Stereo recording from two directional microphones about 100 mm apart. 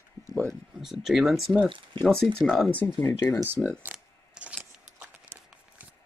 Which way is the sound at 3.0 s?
25° left (ahead or behind).